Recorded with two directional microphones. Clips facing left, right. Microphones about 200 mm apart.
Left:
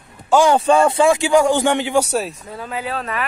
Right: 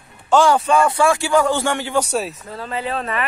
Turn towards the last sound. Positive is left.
turn(degrees=5)  # may be behind; listen again after turning